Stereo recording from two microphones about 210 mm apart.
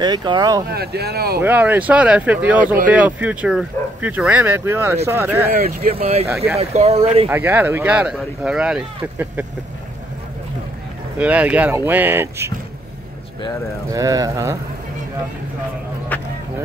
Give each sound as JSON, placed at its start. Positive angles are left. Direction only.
{"t": 0.0, "sound": "speech", "side_deg": -20}
{"t": 0.7, "sound": "speech", "side_deg": -50}
{"t": 1.4, "sound": "speech", "side_deg": -10}
{"t": 5.5, "sound": "speech", "side_deg": -45}
{"t": 5.9, "sound": "speech", "side_deg": -30}
{"t": 6.2, "sound": "speech", "side_deg": -15}
{"t": 6.6, "sound": "speech", "side_deg": -30}
{"t": 7.2, "sound": "speech", "side_deg": -10}
{"t": 11.1, "sound": "speech", "side_deg": -5}
{"t": 13.8, "sound": "speech", "side_deg": -15}
{"t": 16.1, "sound": "a sound", "side_deg": 10}